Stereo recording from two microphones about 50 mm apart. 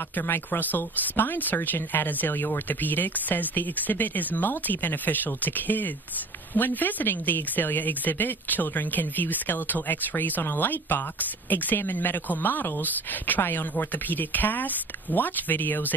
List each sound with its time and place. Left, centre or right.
0.1 s speech: left